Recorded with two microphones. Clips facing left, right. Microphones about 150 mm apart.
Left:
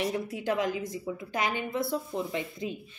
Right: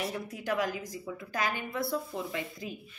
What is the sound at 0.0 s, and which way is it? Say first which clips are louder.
A woman's voice: left 5 dB; 25° left (ahead or behind).